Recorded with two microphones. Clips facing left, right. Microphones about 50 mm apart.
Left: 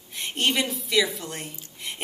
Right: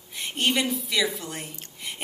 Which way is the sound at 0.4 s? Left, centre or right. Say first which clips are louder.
Even; centre.